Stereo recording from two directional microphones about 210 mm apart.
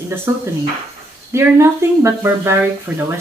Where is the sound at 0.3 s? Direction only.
15° right (ahead or behind).